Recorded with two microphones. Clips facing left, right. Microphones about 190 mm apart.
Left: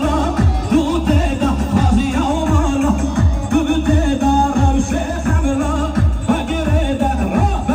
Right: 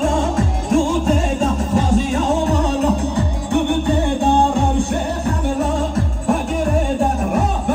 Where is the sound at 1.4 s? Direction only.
25° right (ahead or behind).